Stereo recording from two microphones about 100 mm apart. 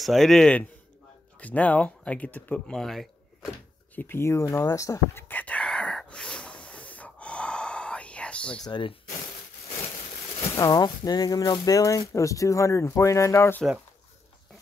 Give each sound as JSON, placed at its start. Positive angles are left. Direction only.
{"t": 0.0, "sound": "a man's voice", "side_deg": 0}
{"t": 2.7, "sound": "a man's voice", "side_deg": 5}
{"t": 3.9, "sound": "speech", "side_deg": 20}
{"t": 5.3, "sound": "a sound", "side_deg": 15}
{"t": 8.6, "sound": "speech", "side_deg": 50}
{"t": 9.7, "sound": "a sound", "side_deg": 90}
{"t": 10.5, "sound": "speech", "side_deg": 35}